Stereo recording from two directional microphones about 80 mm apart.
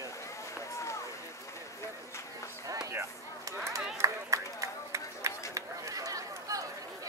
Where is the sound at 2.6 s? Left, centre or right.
Right.